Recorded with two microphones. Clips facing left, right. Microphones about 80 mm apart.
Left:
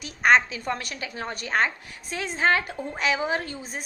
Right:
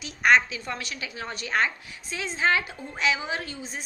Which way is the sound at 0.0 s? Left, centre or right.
Left.